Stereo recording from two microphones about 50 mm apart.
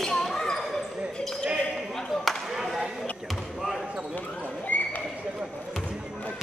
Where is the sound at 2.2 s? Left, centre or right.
Centre.